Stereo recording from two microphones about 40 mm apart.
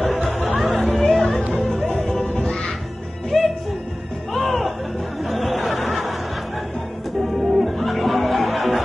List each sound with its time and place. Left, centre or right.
0.6 s music: centre
2.2 s music: left
3.3 s music: centre
5.2 s chatter: centre
7.2 s music: centre